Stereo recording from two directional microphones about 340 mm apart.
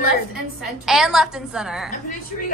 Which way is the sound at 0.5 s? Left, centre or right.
Centre.